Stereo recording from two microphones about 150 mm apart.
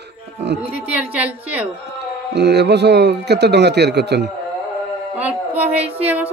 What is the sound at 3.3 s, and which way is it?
Speech, 90° right.